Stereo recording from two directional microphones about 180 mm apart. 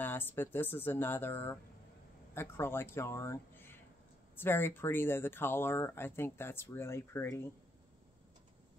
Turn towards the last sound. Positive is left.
turn(degrees=15)  # may be behind; listen again after turning